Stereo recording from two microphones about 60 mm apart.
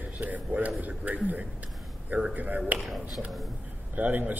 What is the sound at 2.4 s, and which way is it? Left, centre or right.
Speech, right.